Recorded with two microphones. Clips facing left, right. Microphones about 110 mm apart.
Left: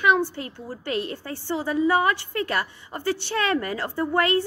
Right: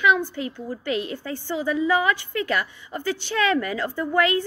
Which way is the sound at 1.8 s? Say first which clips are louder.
Left 2 dB; 35° left (ahead or behind).